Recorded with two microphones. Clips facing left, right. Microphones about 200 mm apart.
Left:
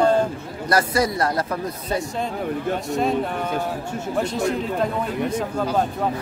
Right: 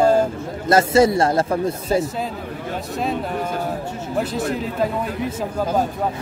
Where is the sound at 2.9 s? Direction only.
Centre (ahead or behind).